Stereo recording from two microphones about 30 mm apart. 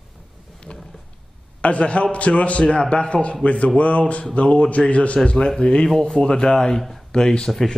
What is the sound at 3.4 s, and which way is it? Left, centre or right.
A man's voice, left.